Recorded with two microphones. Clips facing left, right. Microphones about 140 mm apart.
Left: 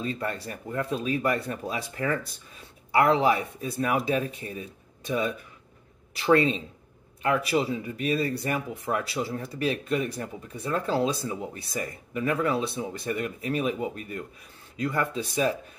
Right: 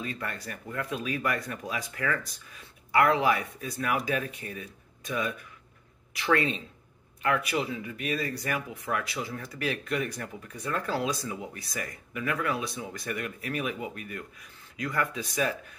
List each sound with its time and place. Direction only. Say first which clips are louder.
0.0 s speech: left 5 dB; 30° left (ahead or behind)